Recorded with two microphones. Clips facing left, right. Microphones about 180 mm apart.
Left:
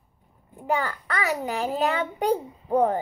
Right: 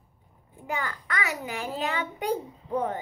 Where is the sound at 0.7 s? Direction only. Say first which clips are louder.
Left 6 dB; 35° left (ahead or behind).